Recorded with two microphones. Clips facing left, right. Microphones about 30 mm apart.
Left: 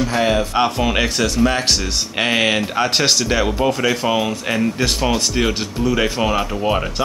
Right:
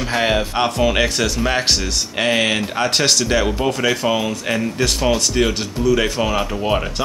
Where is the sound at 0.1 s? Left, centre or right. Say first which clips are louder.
Right 2 dB; centre.